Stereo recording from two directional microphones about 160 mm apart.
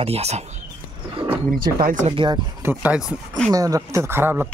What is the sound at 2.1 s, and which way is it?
Speech, 30° right (ahead or behind).